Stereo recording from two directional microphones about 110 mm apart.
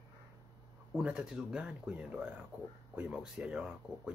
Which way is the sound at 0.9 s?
10° right (ahead or behind).